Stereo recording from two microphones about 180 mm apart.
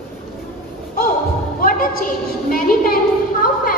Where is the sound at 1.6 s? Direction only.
50° left (ahead or behind).